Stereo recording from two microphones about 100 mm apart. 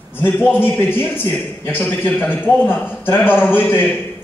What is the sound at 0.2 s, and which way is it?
A man's voice, 20° left (ahead or behind).